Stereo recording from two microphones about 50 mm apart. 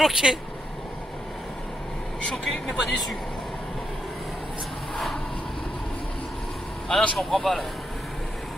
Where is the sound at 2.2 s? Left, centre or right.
Centre.